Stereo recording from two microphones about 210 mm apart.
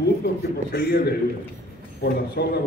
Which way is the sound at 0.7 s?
50° left (ahead or behind).